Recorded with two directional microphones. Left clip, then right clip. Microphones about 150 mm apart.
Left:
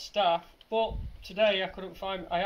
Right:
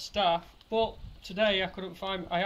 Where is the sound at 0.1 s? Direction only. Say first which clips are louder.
Left 1 dB; 10° left (ahead or behind).